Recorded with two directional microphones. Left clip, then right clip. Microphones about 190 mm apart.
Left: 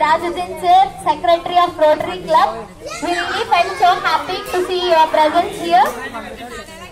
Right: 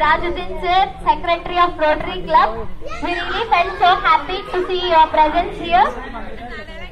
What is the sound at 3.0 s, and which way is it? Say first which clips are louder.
A child's voice: left 2 dB; 45° left (ahead or behind).